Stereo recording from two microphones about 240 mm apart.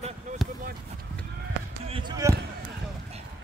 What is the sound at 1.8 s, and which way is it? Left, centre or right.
Basketball bounce, right.